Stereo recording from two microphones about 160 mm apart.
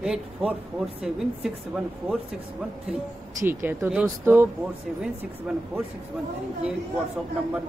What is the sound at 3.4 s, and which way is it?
Speech, 10° right (ahead or behind).